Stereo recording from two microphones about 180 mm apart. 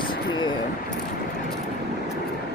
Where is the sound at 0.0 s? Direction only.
25° left (ahead or behind).